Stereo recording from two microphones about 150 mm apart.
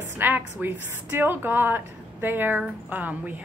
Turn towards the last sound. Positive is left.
turn(degrees=-10)  # may be behind; listen again after turning